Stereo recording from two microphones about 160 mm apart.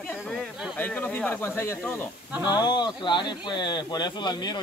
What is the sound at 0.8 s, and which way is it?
Speech, 10° left (ahead or behind).